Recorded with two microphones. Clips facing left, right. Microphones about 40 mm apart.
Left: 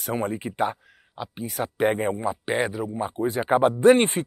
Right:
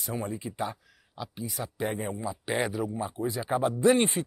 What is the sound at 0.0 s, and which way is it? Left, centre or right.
Speech, left.